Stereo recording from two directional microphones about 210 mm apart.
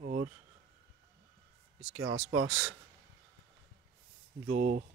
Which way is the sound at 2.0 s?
85° right.